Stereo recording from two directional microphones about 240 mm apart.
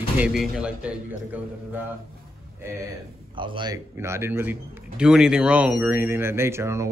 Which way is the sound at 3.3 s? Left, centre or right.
Centre.